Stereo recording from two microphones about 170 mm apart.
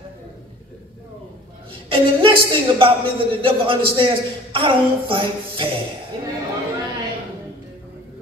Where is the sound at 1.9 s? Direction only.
30° right (ahead or behind).